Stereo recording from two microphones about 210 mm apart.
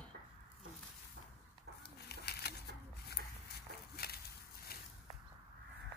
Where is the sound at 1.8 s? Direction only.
50° left (ahead or behind).